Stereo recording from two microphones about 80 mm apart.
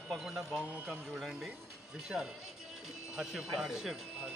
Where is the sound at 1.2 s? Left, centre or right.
Centre.